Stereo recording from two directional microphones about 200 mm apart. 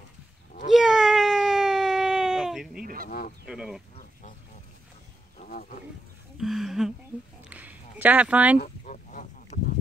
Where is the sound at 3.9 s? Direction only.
40° left (ahead or behind).